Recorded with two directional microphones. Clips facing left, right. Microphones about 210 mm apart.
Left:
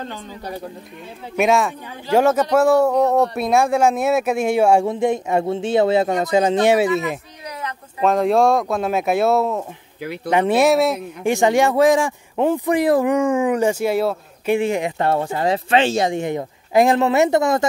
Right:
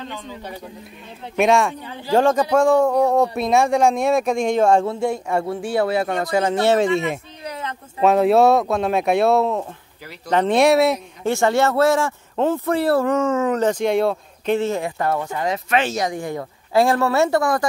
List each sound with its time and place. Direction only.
1.3 s speech: centre (ahead or behind)
8.0 s speech: 5° right (ahead or behind)
11.2 s speech: 15° left (ahead or behind)